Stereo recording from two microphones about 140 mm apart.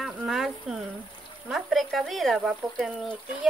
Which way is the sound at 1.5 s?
Centre (ahead or behind).